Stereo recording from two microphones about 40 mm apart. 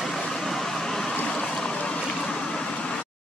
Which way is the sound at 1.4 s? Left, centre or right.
Centre.